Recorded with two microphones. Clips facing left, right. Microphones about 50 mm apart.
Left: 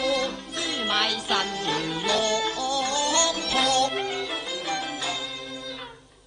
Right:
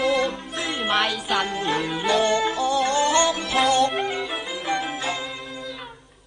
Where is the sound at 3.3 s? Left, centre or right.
Centre.